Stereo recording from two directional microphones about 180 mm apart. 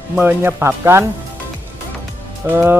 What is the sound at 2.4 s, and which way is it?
Speech, 15° right (ahead or behind).